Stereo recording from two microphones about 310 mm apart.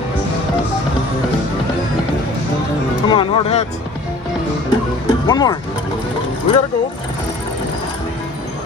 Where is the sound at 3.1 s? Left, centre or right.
Centre.